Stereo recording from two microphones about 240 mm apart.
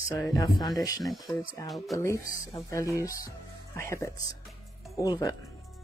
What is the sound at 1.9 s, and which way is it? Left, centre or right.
Speech, centre.